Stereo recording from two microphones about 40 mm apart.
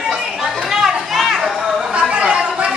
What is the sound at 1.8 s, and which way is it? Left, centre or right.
Chatter, right.